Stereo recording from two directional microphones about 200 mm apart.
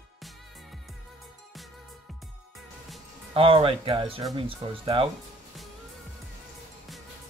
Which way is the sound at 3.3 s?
25° right (ahead or behind).